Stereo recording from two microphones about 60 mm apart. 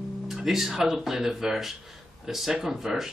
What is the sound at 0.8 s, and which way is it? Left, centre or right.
Speech, centre.